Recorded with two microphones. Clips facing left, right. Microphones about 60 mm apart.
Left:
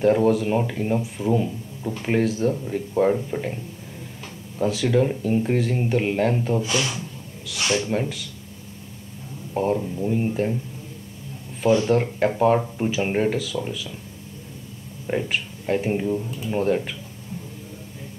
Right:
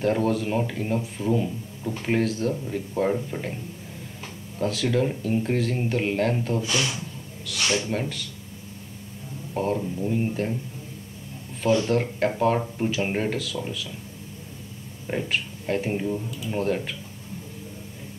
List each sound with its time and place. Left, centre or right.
0.0 s a man's voice: centre
4.6 s speech: centre
6.6 s speech: left
7.4 s a man's voice: centre
9.5 s a man's voice: centre
11.6 s a man's voice: centre
15.0 s a man's voice: centre